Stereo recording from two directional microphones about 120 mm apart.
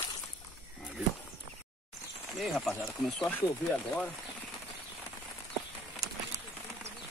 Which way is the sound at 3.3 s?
15° left (ahead or behind).